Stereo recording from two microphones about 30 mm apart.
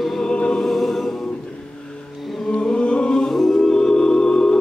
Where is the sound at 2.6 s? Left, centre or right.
Left.